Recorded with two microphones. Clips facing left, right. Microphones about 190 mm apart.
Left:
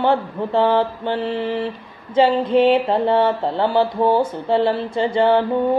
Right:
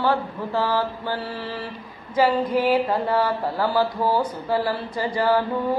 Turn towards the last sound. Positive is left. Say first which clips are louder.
# left 5 dB
turn(degrees=25)  # may be behind; listen again after turning